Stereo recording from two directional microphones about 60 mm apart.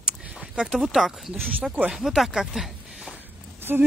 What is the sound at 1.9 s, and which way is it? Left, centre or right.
Speech, centre.